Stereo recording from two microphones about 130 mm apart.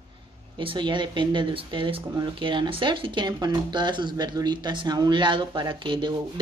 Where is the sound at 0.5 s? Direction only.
35° right (ahead or behind).